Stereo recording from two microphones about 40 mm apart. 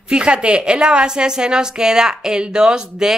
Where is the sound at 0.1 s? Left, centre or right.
Right.